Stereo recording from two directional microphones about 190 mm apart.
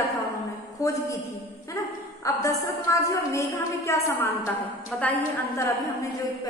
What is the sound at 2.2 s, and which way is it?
A woman's voice, 15° left (ahead or behind).